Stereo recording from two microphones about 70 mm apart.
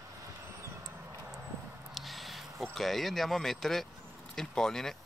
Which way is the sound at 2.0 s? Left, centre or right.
Centre.